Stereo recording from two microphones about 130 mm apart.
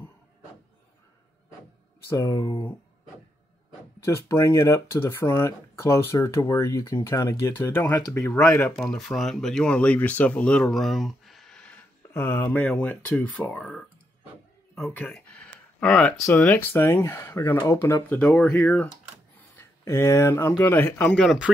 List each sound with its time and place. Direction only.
2.0 s speech: 25° left (ahead or behind)
4.0 s speech: 20° left (ahead or behind)
8.7 s speech: centre (ahead or behind)